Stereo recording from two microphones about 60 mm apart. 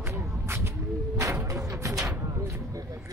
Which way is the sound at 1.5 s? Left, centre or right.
Right.